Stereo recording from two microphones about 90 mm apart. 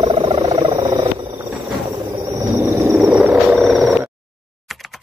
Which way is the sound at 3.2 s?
20° right (ahead or behind).